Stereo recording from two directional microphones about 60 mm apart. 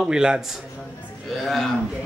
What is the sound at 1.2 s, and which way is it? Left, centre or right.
Speech, centre.